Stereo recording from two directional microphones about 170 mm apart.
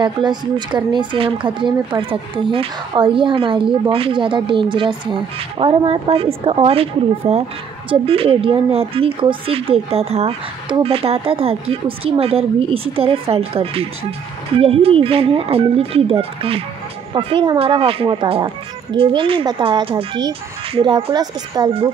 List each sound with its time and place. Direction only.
0.0 s a woman's voice: 25° right (ahead or behind)